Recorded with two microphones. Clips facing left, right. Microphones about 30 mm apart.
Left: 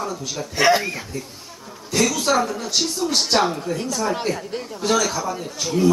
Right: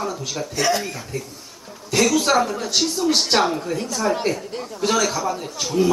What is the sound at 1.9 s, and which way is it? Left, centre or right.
A man's voice, centre.